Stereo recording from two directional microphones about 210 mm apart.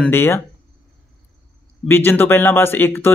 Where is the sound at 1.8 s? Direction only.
10° left (ahead or behind).